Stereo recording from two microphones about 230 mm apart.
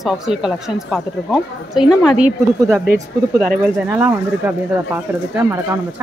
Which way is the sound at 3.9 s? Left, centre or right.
Centre.